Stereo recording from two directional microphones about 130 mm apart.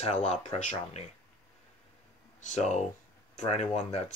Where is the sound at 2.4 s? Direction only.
65° left (ahead or behind).